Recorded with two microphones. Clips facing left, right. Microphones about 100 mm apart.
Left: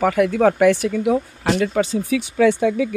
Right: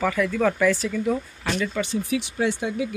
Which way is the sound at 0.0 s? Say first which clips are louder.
Left 6 dB; 60° left (ahead or behind).